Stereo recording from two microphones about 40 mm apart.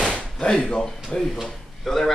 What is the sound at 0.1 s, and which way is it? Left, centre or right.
Speech, centre.